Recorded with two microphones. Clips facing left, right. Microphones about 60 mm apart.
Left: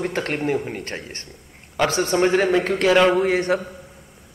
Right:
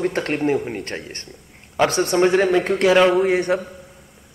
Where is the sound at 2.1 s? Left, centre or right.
Centre.